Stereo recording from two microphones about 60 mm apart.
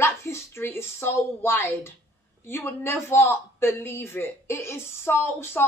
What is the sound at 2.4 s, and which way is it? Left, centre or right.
Speech, left.